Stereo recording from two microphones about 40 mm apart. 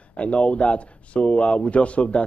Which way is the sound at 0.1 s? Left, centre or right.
Left.